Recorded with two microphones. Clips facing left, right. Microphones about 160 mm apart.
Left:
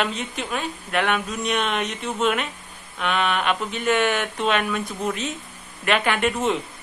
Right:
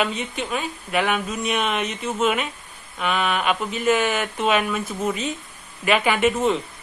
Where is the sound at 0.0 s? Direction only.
Centre (ahead or behind).